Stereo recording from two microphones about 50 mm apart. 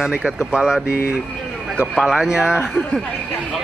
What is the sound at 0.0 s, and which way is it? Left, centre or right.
Speech, centre.